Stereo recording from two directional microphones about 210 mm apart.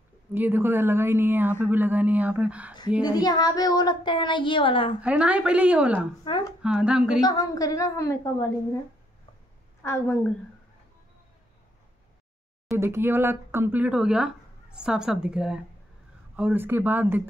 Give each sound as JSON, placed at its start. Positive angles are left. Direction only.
{"t": 0.3, "sound": "speech", "side_deg": -10}
{"t": 3.0, "sound": "speech", "side_deg": 20}
{"t": 5.0, "sound": "speech", "side_deg": -5}
{"t": 6.2, "sound": "speech", "side_deg": 20}
{"t": 6.6, "sound": "speech", "side_deg": -5}
{"t": 7.2, "sound": "a woman's voice", "side_deg": 15}
{"t": 9.8, "sound": "a woman's voice", "side_deg": 10}
{"t": 12.7, "sound": "speech", "side_deg": -10}